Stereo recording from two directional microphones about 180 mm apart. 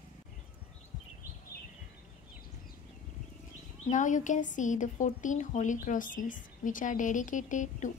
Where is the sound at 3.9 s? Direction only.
45° left (ahead or behind).